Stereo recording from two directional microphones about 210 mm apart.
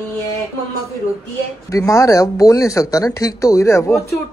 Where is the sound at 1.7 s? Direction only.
15° left (ahead or behind).